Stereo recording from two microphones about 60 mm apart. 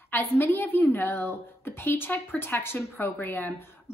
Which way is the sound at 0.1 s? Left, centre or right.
Left.